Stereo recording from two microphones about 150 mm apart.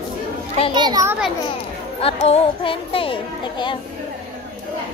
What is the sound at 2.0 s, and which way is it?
A child's voice, 40° left (ahead or behind).